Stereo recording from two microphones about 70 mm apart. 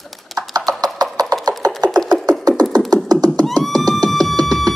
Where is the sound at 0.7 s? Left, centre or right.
Right.